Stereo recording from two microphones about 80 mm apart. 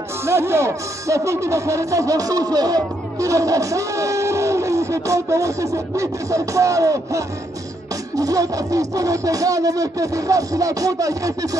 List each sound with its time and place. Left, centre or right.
0.2 s speech: right